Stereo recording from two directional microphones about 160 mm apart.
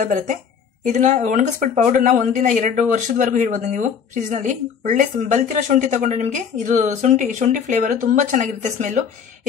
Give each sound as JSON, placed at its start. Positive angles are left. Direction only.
{"t": 0.0, "sound": "speech", "side_deg": -55}